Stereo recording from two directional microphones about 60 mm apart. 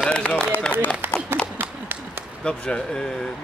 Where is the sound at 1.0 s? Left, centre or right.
Right.